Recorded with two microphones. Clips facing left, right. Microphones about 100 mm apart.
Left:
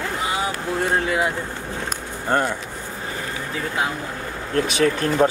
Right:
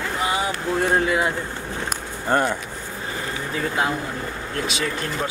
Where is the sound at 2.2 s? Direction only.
10° right (ahead or behind).